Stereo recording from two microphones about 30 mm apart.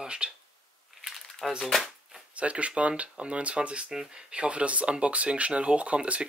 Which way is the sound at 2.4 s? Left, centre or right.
Right.